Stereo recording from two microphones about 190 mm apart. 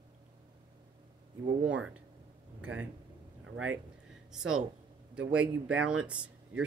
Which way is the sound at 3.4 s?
90° right.